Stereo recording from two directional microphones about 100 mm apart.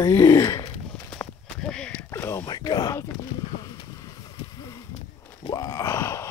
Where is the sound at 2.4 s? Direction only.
50° left (ahead or behind).